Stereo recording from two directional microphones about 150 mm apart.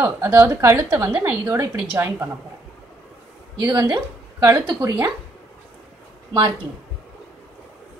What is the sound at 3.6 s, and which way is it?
Speech, 25° right (ahead or behind).